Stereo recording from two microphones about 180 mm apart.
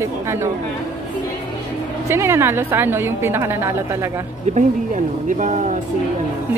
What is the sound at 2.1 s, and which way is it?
A woman's voice, 15° right (ahead or behind).